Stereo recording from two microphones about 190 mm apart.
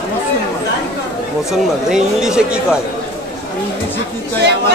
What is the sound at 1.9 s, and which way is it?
Speech, 5° right (ahead or behind).